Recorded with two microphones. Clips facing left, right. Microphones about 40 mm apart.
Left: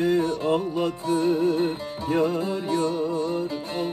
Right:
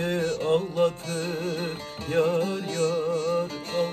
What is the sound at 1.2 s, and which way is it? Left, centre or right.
Mantra, right.